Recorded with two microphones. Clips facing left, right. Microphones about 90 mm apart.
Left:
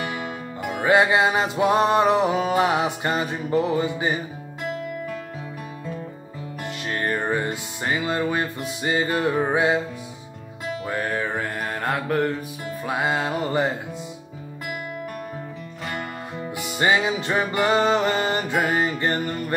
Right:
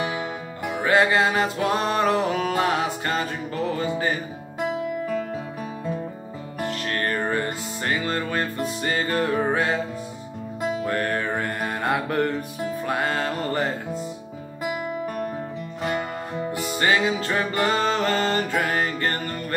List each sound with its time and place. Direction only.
0.1 s music: 5° right (ahead or behind)
0.8 s music: 20° left (ahead or behind)
6.6 s music: 10° left (ahead or behind)
10.8 s music: 5° left (ahead or behind)
15.8 s music: 5° right (ahead or behind)
16.7 s music: 15° left (ahead or behind)